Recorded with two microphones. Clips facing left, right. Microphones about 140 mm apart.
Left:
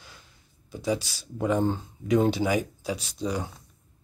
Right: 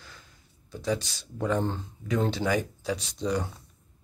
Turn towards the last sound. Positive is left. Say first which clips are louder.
# right 1 dB
turn(degrees=5)  # may be behind; listen again after turning